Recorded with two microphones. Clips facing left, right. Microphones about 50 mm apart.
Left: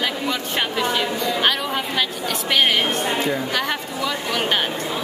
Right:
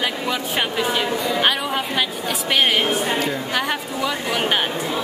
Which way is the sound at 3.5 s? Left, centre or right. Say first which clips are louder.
Right 1 dB; centre.